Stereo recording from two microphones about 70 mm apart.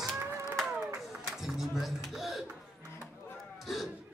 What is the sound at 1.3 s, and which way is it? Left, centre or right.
Music, centre.